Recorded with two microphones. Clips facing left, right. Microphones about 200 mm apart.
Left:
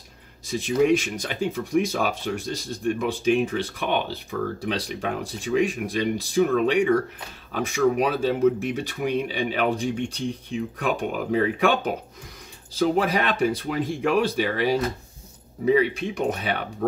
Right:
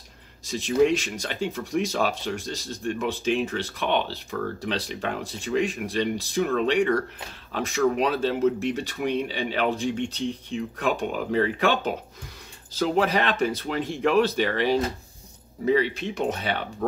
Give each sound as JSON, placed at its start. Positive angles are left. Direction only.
{"t": 0.5, "sound": "speech", "side_deg": 10}